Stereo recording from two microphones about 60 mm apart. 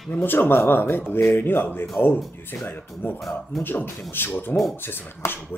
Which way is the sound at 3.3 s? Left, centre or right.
Left.